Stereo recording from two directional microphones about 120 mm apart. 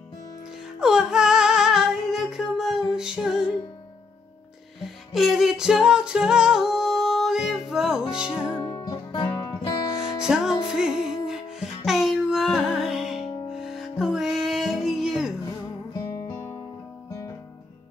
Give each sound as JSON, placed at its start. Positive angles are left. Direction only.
{"t": 0.7, "sound": "female singing", "side_deg": -5}
{"t": 3.0, "sound": "music", "side_deg": -5}
{"t": 5.1, "sound": "music", "side_deg": 0}
{"t": 8.5, "sound": "music", "side_deg": 25}
{"t": 9.9, "sound": "music", "side_deg": -5}
{"t": 16.1, "sound": "guitar", "side_deg": 25}